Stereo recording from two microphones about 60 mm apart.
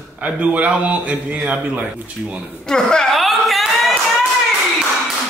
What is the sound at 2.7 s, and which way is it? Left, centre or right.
Speech, centre.